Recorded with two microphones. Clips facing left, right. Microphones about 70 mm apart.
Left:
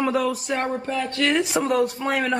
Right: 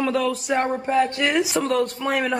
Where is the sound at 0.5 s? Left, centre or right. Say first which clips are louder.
Right 4 dB; right.